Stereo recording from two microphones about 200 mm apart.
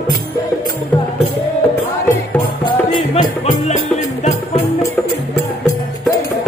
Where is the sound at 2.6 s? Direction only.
20° left (ahead or behind).